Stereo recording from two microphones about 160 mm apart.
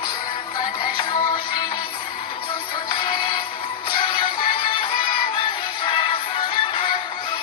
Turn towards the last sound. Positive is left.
turn(degrees=35)  # may be behind; listen again after turning